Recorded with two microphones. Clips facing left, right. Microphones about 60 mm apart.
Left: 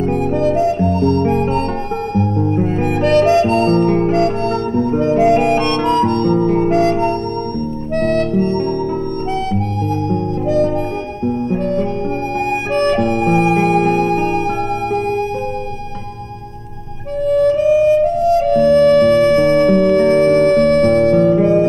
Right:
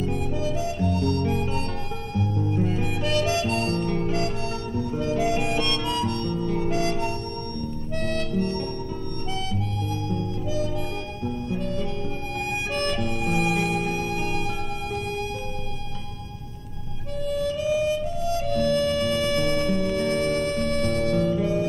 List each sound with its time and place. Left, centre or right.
0.0 s harmonica: left
2.1 s music: left
7.9 s harmonica: left
10.0 s music: left
13.7 s music: left
17.2 s music: left
18.9 s music: left